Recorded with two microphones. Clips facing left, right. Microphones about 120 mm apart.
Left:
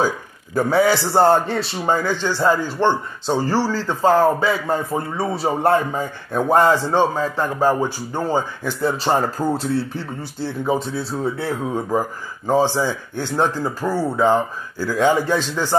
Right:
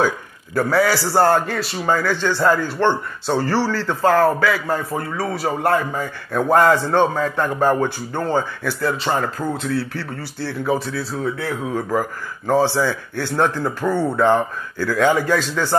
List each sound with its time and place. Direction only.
0.6 s a man's voice: 20° left (ahead or behind)
2.2 s a man's voice: 15° left (ahead or behind)
6.3 s speech: 15° left (ahead or behind)
9.0 s a man's voice: 35° left (ahead or behind)
9.9 s a man's voice: 20° left (ahead or behind)
11.2 s a man's voice: 30° left (ahead or behind)
11.7 s speech: 20° left (ahead or behind)